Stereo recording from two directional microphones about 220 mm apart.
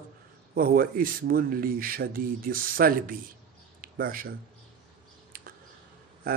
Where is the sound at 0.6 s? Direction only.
40° right (ahead or behind).